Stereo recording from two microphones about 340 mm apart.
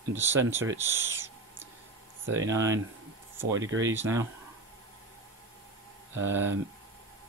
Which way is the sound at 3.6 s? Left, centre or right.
Right.